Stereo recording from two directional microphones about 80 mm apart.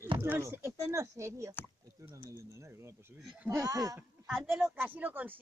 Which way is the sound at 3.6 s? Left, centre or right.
Right.